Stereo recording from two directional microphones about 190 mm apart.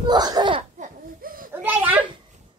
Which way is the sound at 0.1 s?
20° right (ahead or behind).